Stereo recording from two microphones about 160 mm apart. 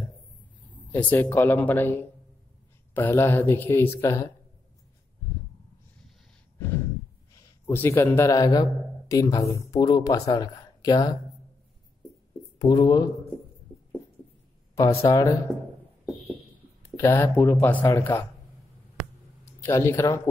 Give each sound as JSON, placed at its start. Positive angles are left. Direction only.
{"t": 0.9, "sound": "speech", "side_deg": 10}
{"t": 7.3, "sound": "speech", "side_deg": 15}
{"t": 12.5, "sound": "speech", "side_deg": 25}
{"t": 15.0, "sound": "speech", "side_deg": 20}
{"t": 16.9, "sound": "speech", "side_deg": 15}
{"t": 19.7, "sound": "speech", "side_deg": 15}